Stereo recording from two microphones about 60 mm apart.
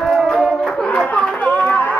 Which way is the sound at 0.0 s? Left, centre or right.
Centre.